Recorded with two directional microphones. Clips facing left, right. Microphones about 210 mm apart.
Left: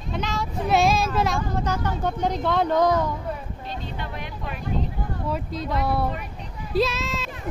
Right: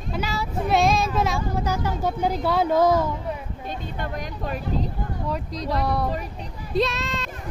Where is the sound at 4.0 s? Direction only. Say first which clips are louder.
Right 3 dB; 40° right (ahead or behind).